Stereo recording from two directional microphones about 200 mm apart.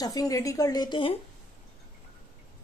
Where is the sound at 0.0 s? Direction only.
15° left (ahead or behind).